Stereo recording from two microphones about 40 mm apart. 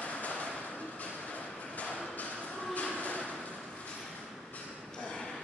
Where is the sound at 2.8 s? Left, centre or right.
Left.